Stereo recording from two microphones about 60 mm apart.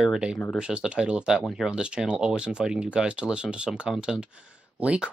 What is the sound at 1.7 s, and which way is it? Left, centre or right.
Speech, centre.